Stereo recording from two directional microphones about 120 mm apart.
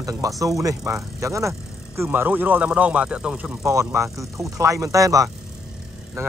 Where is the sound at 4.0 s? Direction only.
25° right (ahead or behind).